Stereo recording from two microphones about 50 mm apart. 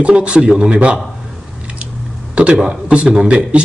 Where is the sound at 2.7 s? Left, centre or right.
Right.